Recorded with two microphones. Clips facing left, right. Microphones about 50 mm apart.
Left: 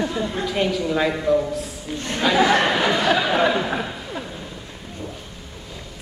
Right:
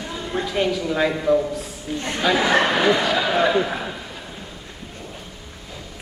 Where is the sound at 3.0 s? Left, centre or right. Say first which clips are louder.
Left 1 dB; centre.